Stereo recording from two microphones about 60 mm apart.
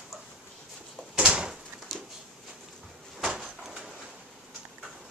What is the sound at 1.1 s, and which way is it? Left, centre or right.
Door, centre.